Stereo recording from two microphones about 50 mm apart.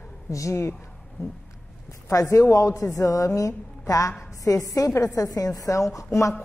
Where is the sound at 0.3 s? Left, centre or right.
Left.